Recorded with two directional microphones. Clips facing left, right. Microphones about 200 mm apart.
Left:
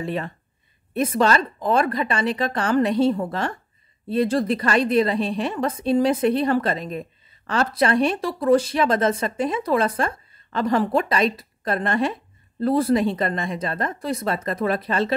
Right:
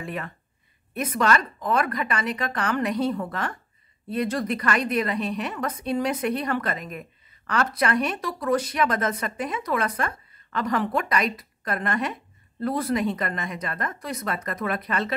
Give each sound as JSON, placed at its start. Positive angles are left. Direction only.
{"t": 0.0, "sound": "a woman's voice", "side_deg": 30}